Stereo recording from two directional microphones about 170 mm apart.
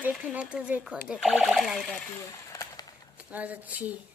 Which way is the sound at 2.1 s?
15° left (ahead or behind).